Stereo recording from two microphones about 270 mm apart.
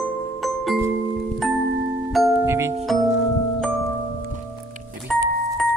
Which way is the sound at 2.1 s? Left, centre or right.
Centre.